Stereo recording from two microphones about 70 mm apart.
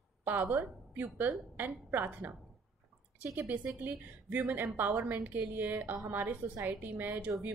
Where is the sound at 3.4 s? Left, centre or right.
Right.